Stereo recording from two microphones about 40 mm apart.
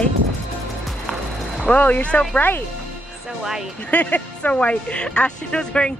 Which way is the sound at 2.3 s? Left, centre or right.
Left.